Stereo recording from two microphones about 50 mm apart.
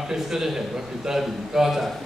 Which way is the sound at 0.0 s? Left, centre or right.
Centre.